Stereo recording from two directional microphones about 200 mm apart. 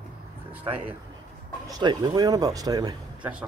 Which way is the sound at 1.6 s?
20° right (ahead or behind).